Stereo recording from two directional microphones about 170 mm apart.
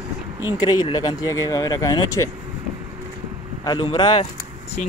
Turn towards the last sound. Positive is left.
turn(degrees=30)  # may be behind; listen again after turning